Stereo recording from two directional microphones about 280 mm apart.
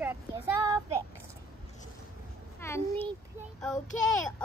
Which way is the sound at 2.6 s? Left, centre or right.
Centre.